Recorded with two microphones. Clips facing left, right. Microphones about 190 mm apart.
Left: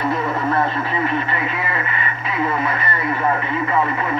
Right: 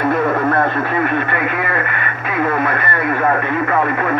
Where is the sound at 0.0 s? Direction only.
55° right (ahead or behind).